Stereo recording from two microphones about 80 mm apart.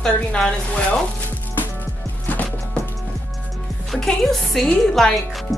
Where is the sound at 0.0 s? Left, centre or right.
Centre.